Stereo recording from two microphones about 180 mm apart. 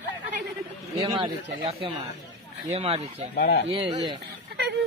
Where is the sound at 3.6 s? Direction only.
30° right (ahead or behind).